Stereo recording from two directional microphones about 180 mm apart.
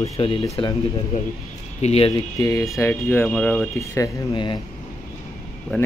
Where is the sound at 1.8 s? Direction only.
35° left (ahead or behind); by 3.6 s 5° left (ahead or behind).